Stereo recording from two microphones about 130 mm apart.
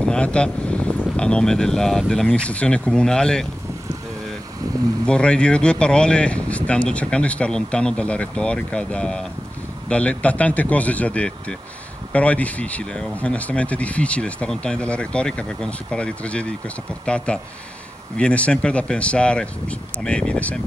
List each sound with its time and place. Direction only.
0.0 s speech: 5° left (ahead or behind)
5.0 s speech: 5° left (ahead or behind)